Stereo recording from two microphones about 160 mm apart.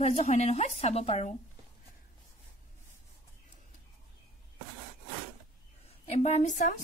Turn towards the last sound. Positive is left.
turn(degrees=50)  # may be behind; listen again after turning